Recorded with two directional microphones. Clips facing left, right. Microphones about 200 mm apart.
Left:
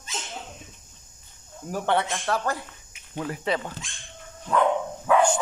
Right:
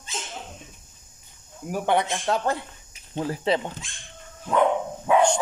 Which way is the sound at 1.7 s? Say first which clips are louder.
Right 2 dB; 15° right (ahead or behind).